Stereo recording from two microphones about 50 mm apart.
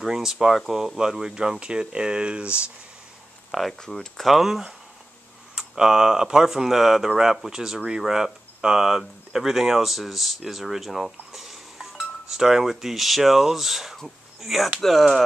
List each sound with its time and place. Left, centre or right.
0.0 s speech: centre
3.8 s speech: centre
4.2 s speech: centre